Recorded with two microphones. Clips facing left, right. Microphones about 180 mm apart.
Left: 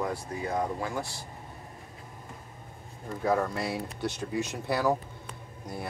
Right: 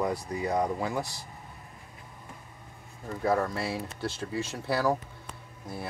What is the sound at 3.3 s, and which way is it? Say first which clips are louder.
Speech: even; 5° right (ahead or behind).